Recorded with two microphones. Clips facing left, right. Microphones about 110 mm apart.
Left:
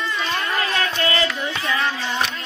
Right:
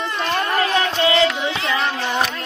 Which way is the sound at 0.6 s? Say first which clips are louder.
Right 5 dB; 20° right (ahead or behind).